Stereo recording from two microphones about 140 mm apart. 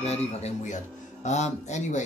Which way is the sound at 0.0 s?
50° left (ahead or behind).